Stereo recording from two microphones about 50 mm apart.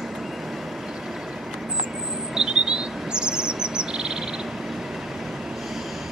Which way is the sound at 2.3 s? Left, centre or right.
Centre.